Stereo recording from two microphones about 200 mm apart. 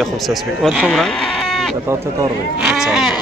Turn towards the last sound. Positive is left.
turn(degrees=0)  # may be behind; listen again after turning